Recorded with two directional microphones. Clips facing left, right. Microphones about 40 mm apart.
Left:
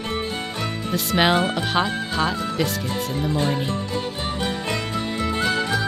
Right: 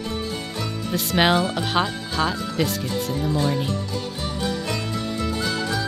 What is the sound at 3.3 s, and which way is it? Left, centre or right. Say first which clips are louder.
Speech: even; left.